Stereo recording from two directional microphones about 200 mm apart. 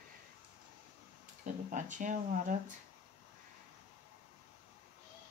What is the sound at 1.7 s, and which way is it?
Speech, 40° right (ahead or behind).